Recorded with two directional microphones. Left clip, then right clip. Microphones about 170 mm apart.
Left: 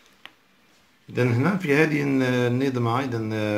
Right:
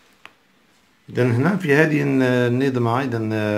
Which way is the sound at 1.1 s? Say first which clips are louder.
Right 3 dB; 25° right (ahead or behind).